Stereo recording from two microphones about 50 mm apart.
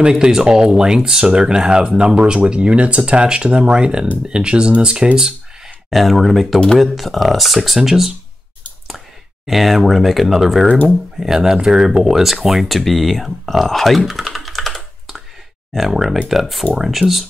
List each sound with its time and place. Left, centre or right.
0.1 s speech: centre
5.9 s speech: centre
9.5 s speech: centre
10.7 s speech: left
11.1 s speech: centre